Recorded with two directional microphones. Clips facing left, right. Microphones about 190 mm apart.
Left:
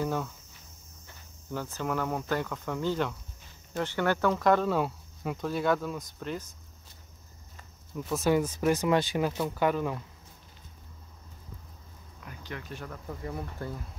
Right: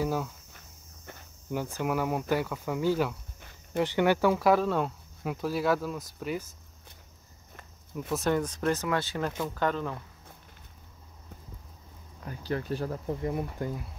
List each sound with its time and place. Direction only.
0.0 s speech: 5° right (ahead or behind)
1.5 s speech: 15° right (ahead or behind)
7.9 s speech: centre (ahead or behind)
12.3 s speech: 35° right (ahead or behind); by 13.8 s 15° right (ahead or behind)